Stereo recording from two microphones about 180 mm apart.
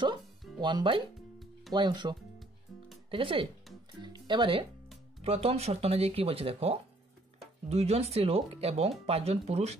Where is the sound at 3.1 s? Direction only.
30° right (ahead or behind).